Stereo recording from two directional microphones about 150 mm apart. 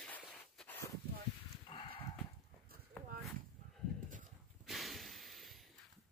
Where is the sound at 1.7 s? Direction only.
35° left (ahead or behind).